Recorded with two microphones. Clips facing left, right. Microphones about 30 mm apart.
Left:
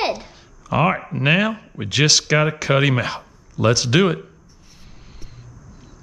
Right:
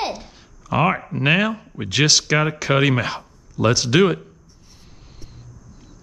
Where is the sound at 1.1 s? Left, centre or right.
Centre.